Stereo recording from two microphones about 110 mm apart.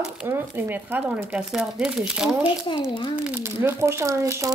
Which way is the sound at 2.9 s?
45° left (ahead or behind).